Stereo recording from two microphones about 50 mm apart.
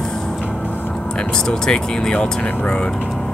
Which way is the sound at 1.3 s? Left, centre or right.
Centre.